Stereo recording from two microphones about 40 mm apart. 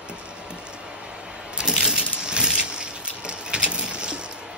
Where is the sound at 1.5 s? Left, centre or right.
Centre.